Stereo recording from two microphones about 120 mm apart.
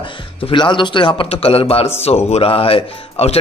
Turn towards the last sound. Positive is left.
turn(degrees=55)  # may be behind; listen again after turning